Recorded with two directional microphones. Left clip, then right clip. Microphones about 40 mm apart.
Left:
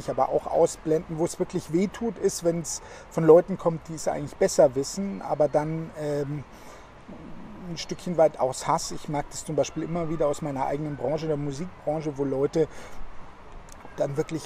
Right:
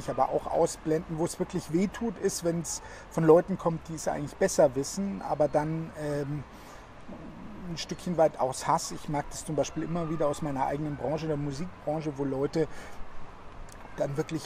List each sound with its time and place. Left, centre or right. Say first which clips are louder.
0.0 s speech: left 3 dB; left
7.7 s speech: left 4 dB; left
13.9 s speech: left 4 dB; left